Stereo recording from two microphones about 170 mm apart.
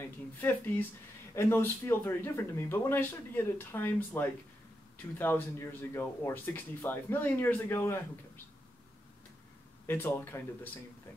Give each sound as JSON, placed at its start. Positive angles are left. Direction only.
{"t": 0.4, "sound": "speech", "side_deg": 10}
{"t": 9.8, "sound": "speech", "side_deg": 10}